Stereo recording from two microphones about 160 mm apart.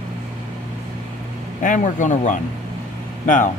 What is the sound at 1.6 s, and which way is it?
Speech, 50° left (ahead or behind).